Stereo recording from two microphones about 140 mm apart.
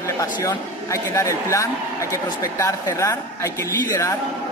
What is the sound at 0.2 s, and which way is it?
A man's voice, 20° left (ahead or behind).